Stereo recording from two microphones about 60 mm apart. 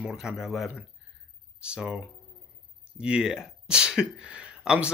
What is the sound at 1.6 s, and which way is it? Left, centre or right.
Speech, centre.